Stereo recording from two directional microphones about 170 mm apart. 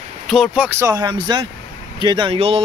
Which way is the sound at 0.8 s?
20° right (ahead or behind).